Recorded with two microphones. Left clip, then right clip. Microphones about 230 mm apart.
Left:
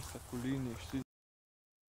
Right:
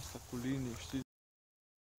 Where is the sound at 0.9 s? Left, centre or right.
Centre.